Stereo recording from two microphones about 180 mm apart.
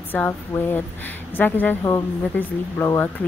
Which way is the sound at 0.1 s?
10° left (ahead or behind).